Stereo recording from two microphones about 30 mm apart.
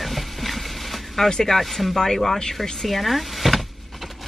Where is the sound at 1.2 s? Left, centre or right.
Left.